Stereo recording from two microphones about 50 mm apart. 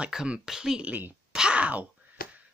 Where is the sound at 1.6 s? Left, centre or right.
Right.